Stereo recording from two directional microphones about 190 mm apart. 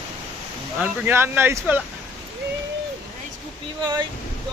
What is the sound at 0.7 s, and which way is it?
Speech, 10° right (ahead or behind).